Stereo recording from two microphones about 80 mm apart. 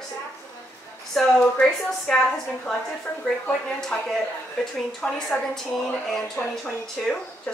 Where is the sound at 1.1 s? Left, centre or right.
Centre.